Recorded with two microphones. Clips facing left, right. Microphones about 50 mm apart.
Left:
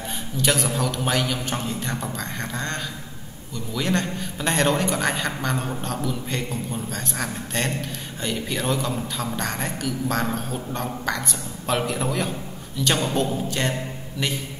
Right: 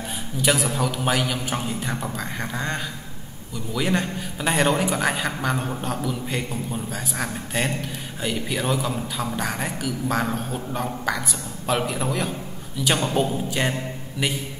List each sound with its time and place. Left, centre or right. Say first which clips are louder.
0.4 s a man's voice: right 1 dB; centre